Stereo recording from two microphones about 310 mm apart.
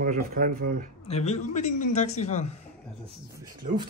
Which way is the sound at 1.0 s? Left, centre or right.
Centre.